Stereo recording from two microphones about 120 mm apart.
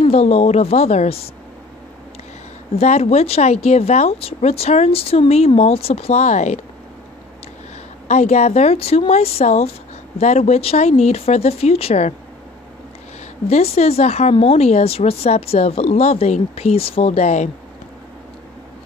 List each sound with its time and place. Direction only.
0.0 s speech: 60° left (ahead or behind)
2.7 s speech: 60° left (ahead or behind); by 6.6 s 75° left (ahead or behind)
8.1 s speech: 70° left (ahead or behind)
10.1 s speech: 70° left (ahead or behind)
13.5 s speech: 60° left (ahead or behind)